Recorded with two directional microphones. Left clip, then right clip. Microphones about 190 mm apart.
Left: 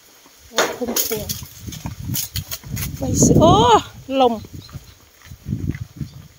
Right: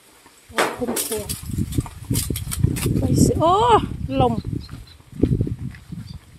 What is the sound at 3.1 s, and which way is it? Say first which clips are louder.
Speech: left 4 dB; 15° left (ahead or behind).